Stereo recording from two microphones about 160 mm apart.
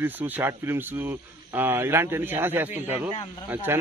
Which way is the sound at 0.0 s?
10° right (ahead or behind).